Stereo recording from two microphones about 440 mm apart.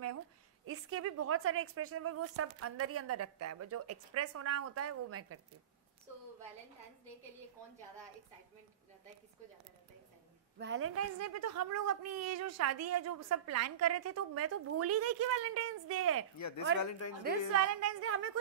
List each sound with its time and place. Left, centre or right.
0.7 s a woman's voice: right
10.6 s a woman's voice: right
16.3 s speech: left
17.5 s a woman's voice: right